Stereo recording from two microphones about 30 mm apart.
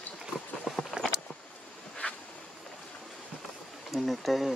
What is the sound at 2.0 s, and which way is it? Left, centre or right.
Insect, left.